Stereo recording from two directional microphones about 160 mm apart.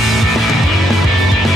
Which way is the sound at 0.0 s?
Centre (ahead or behind).